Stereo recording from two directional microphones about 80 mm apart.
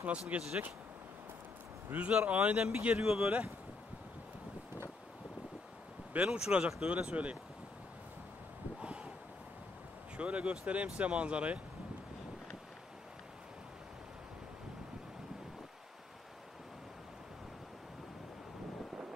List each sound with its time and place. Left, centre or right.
0.0 s speech: centre
1.9 s speech: centre
6.2 s speech: centre
8.8 s a sound: centre
10.1 s speech: centre